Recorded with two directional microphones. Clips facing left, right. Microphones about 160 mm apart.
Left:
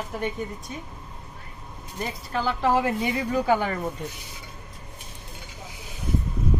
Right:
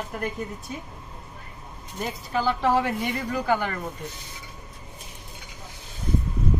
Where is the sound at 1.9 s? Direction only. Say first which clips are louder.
Right 1 dB; centre (ahead or behind).